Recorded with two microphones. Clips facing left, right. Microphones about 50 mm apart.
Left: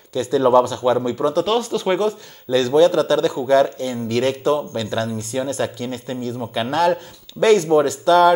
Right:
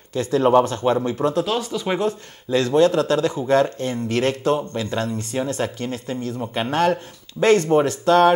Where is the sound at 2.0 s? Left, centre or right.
Right.